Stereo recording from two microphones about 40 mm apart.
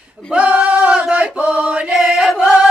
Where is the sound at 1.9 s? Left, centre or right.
Centre.